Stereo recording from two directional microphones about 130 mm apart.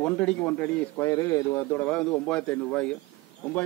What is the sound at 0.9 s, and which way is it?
Speech, 20° left (ahead or behind).